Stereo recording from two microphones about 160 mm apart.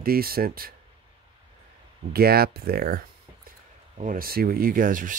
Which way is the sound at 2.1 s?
75° right (ahead or behind).